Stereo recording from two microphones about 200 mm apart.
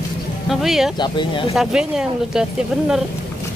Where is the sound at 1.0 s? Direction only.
25° left (ahead or behind).